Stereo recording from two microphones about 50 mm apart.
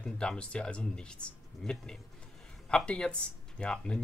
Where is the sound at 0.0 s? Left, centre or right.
Centre.